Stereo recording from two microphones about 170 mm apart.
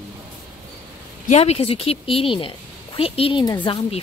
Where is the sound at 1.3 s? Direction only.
35° left (ahead or behind).